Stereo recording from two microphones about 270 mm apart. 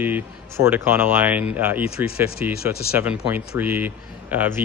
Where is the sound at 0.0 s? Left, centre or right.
Centre.